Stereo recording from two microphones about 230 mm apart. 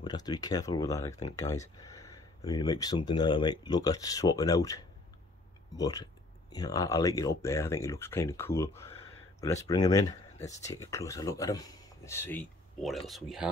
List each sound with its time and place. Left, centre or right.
0.0 s speech: centre